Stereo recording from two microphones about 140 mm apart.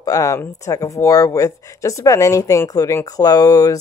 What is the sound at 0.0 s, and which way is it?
Speech, 25° left (ahead or behind).